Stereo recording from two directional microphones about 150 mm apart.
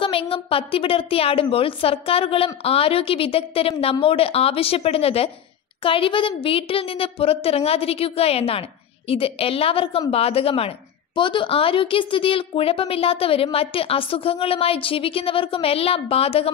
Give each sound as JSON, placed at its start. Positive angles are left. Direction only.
{"t": 0.0, "sound": "a woman's voice", "side_deg": 40}